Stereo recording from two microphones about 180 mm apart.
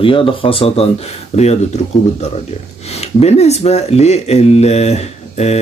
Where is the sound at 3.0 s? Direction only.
35° left (ahead or behind).